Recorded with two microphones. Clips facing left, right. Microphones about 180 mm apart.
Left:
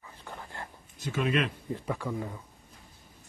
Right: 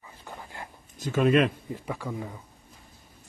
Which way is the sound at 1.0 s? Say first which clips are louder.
Right 7 dB; 45° right (ahead or behind).